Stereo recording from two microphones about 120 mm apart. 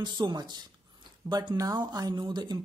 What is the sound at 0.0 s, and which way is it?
Speech, 40° right (ahead or behind).